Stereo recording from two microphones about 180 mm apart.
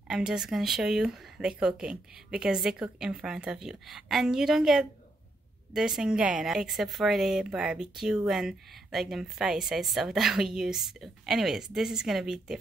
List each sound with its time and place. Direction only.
0.1 s a woman's voice: 5° right (ahead or behind)